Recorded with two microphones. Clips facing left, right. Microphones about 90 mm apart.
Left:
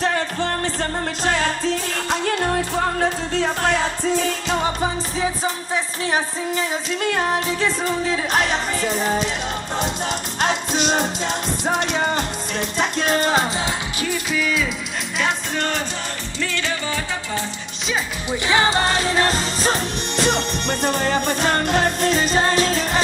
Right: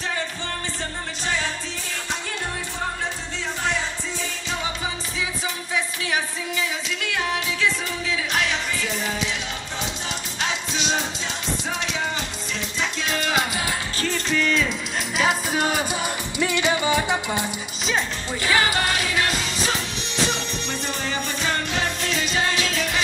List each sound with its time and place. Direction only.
0.0 s music: 50° left (ahead or behind)
10.4 s music: 50° left (ahead or behind)
13.9 s music: 10° left (ahead or behind)
15.1 s music: 5° right (ahead or behind)
18.5 s music: 25° left (ahead or behind)
20.2 s music: 55° left (ahead or behind); by 23.0 s 40° left (ahead or behind)